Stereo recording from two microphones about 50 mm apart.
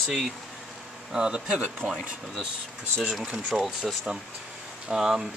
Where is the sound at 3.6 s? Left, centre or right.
Centre.